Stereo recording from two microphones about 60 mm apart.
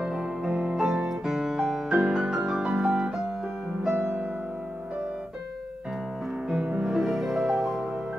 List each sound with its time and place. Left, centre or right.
0.0 s music: centre
0.5 s music: right
0.7 s music: centre
3.9 s music: right
6.8 s music: centre